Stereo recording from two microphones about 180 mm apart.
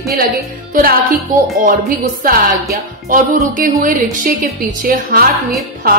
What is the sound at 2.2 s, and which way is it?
Music, 55° right (ahead or behind).